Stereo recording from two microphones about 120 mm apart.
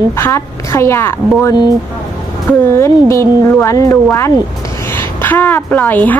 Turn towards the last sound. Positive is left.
turn(degrees=15)  # may be behind; listen again after turning